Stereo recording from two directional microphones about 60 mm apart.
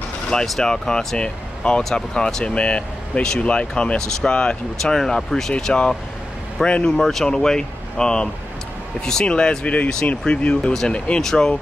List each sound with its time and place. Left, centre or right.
0.3 s speech: centre
7.0 s speech: centre
11.1 s speech: centre